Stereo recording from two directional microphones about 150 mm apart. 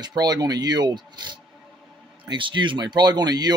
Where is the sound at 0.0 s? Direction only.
25° right (ahead or behind).